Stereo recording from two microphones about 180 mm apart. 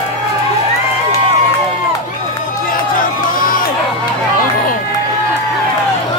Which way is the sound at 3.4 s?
50° left (ahead or behind).